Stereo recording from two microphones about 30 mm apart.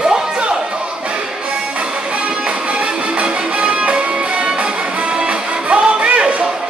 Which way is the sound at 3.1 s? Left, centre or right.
Right.